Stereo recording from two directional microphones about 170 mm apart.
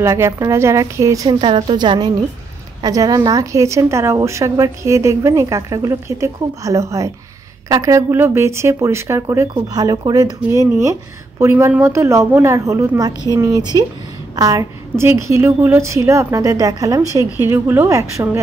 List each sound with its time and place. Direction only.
0.0 s a woman's voice: 15° right (ahead or behind)